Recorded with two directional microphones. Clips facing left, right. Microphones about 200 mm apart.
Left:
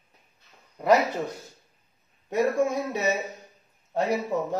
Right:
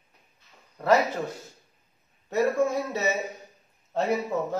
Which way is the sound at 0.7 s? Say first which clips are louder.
Left 1 dB; 15° left (ahead or behind).